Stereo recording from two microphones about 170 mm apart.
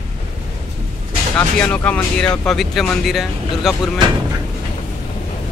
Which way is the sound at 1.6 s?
5° left (ahead or behind).